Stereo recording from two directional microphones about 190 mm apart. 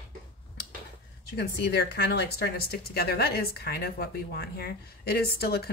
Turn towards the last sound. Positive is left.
turn(degrees=55)  # may be behind; listen again after turning